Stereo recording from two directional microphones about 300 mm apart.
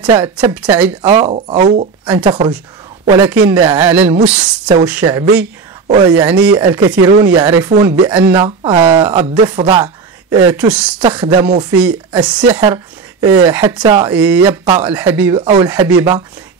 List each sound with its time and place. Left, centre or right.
0.0 s speech: centre
1.0 s speech: right
4.1 s speech: centre